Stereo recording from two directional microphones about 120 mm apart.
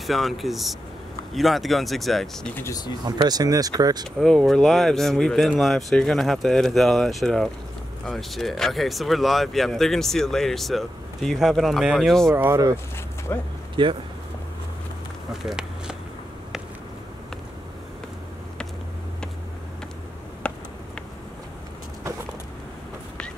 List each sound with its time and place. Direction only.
0.0 s speech: centre (ahead or behind)
3.1 s speech: 35° right (ahead or behind)
4.2 s speech: 5° left (ahead or behind)
12.3 s speech: 20° right (ahead or behind)
13.3 s speech: 20° left (ahead or behind)
13.8 s speech: 40° right (ahead or behind)
15.4 s walk: 5° right (ahead or behind)
20.4 s a sound: 10° left (ahead or behind)